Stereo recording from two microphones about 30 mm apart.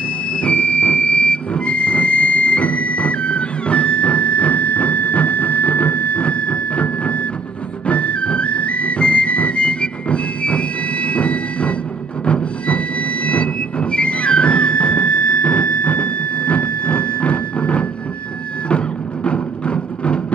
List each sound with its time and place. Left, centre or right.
0.4 s music: left
12.3 s train: left
19.2 s music: left